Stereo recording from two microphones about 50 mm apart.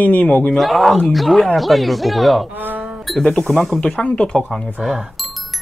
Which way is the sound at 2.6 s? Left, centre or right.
Right.